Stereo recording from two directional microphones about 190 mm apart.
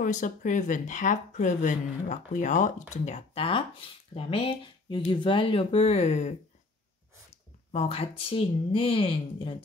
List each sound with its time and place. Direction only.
0.0 s speech: 40° left (ahead or behind)
7.7 s a woman's voice: 35° left (ahead or behind)